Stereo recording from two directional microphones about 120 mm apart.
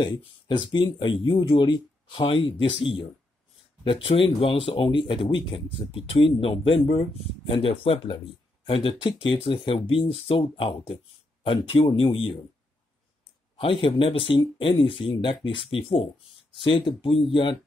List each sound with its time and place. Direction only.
0.2 s speech: 40° left (ahead or behind)
3.8 s speech: 45° left (ahead or behind)
13.6 s speech: 45° left (ahead or behind)